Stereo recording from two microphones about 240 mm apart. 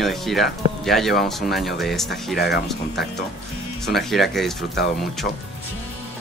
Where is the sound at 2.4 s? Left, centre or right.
Left.